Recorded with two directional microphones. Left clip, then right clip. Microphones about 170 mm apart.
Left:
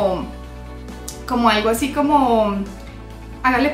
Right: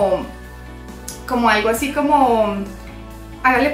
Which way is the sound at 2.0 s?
15° left (ahead or behind).